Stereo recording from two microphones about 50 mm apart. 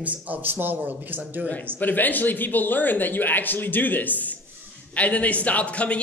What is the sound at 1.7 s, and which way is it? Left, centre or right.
A man's voice, left.